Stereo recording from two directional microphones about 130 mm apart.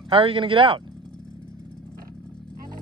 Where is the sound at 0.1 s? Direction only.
40° right (ahead or behind).